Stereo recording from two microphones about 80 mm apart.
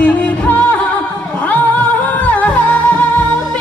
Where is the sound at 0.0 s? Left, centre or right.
Centre.